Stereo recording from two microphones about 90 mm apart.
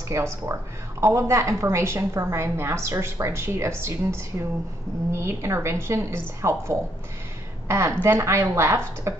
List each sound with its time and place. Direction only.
0.1 s a woman's voice: 30° right (ahead or behind)